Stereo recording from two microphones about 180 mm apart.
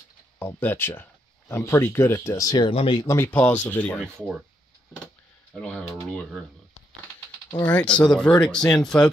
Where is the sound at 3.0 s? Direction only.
15° left (ahead or behind).